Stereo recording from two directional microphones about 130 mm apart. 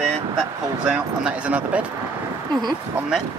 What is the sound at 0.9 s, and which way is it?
Speech, 10° right (ahead or behind).